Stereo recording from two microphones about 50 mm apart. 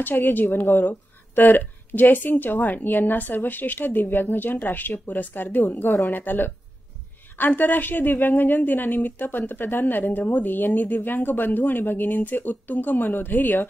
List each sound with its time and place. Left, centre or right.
0.0 s speech: left